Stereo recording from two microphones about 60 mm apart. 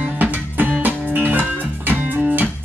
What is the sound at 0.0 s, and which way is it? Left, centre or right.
Music, right.